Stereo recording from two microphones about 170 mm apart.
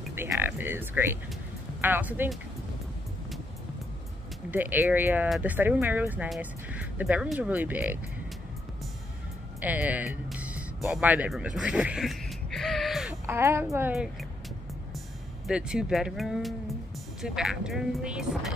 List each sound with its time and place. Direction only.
0.1 s speech: 15° right (ahead or behind)
4.5 s speech: 10° right (ahead or behind)
9.6 s music: 10° right (ahead or behind)
13.3 s speech: 15° right (ahead or behind)
15.4 s speech: 5° right (ahead or behind)